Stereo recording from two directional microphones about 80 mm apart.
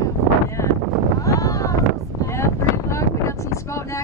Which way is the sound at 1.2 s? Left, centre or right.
Left.